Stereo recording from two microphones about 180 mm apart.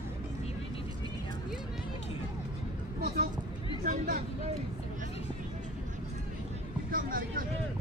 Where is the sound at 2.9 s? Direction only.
60° right (ahead or behind).